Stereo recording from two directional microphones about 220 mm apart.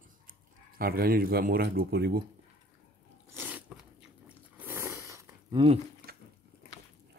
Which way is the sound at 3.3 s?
5° right (ahead or behind).